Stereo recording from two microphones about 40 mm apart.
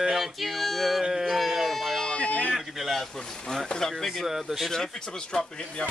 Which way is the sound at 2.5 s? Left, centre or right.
Centre.